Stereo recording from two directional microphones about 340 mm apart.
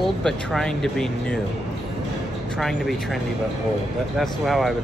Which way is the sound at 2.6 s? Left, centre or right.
Centre.